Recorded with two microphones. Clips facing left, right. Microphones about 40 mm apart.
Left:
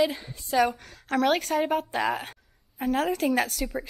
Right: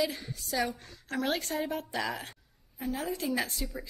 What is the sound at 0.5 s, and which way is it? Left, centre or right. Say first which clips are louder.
A woman's voice: left 9 dB; left.